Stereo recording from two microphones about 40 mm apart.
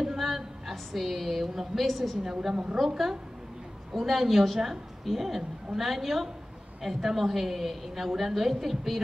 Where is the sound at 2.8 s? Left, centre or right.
Centre.